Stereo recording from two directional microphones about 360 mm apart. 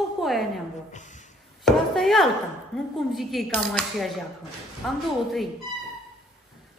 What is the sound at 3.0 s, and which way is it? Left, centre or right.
Speech, centre.